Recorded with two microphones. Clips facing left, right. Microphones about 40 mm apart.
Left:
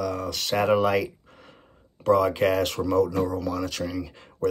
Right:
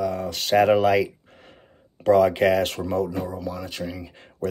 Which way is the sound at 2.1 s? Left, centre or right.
Right.